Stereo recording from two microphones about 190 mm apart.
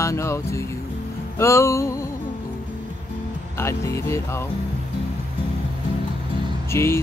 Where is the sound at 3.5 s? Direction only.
15° left (ahead or behind).